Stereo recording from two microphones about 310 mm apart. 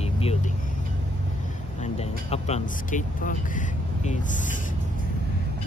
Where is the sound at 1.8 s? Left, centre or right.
Centre.